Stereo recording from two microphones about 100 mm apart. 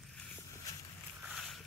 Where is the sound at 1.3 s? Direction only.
5° left (ahead or behind).